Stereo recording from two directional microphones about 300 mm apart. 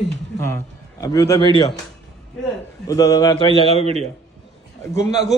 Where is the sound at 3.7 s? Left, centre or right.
Right.